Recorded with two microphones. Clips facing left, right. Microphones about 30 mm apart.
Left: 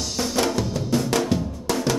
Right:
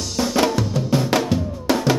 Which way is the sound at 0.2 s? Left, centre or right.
Centre.